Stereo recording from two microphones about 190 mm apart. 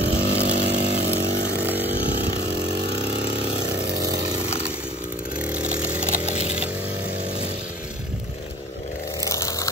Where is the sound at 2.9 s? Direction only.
60° right (ahead or behind).